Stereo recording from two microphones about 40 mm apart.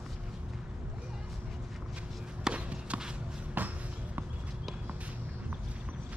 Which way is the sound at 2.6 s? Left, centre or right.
Right.